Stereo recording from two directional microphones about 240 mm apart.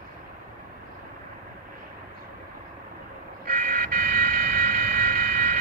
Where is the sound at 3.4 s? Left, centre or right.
Right.